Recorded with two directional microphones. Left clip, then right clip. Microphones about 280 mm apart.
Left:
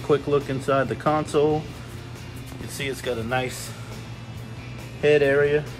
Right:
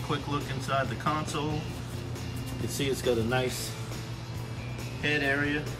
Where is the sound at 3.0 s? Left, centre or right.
Centre.